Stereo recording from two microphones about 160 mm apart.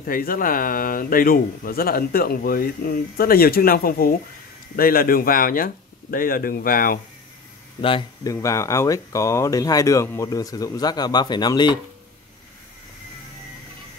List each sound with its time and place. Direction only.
0.0 s speech: 65° left (ahead or behind)
7.8 s speech: 30° left (ahead or behind)
8.3 s speech: 20° left (ahead or behind)